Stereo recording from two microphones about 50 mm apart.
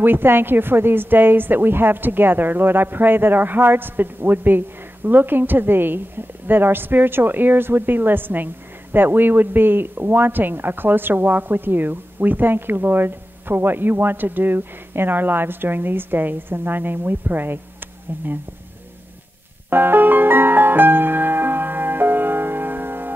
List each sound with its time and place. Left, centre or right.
0.0 s speech: right
19.7 s music: right